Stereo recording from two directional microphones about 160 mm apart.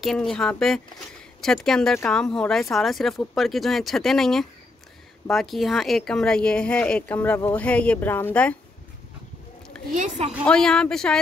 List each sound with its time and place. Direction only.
0.0 s speech: centre (ahead or behind)
9.9 s a woman's voice: 45° right (ahead or behind)
10.4 s speech: 5° left (ahead or behind)